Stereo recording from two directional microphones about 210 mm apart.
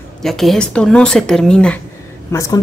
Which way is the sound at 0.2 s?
Centre (ahead or behind).